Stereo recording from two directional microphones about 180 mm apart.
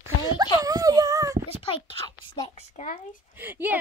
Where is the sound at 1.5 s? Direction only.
30° left (ahead or behind).